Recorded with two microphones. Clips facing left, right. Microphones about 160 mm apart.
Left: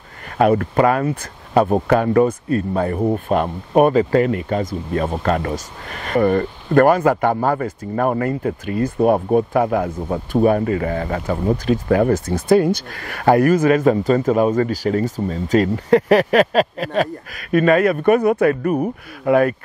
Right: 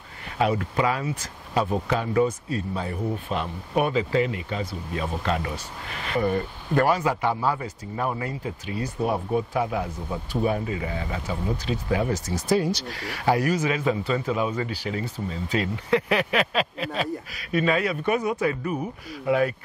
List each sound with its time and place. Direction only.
0.4 s speech: 55° left (ahead or behind)